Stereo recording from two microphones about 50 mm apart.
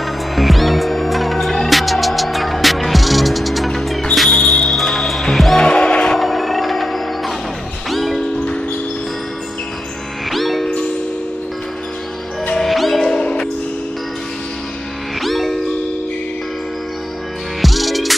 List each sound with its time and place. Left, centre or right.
0.4 s music: centre
4.3 s music: centre
5.6 s music: centre
6.1 s music: centre
10.3 s music: centre
12.5 s music: centre
13.1 s music: centre
15.1 s music: centre
17.6 s music: centre